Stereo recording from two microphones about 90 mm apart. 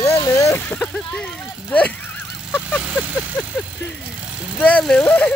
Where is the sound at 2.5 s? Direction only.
20° left (ahead or behind).